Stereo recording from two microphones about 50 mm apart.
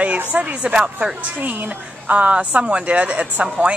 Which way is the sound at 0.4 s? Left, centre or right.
Right.